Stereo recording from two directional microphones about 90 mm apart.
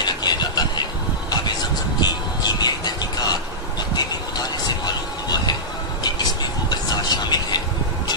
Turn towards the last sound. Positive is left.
turn(degrees=50)  # may be behind; listen again after turning